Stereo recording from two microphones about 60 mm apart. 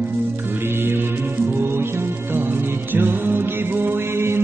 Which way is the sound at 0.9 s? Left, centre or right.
Right.